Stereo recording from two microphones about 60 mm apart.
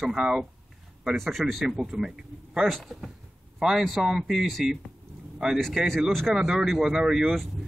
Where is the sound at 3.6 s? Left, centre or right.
Centre.